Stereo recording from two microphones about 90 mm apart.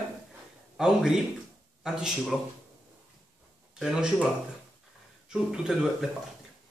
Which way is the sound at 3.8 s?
5° right (ahead or behind).